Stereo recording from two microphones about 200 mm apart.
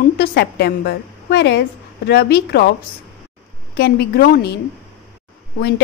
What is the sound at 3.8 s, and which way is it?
Speech, 50° left (ahead or behind).